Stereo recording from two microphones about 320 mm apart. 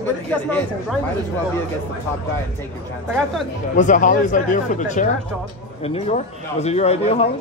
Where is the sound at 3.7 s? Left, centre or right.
Left.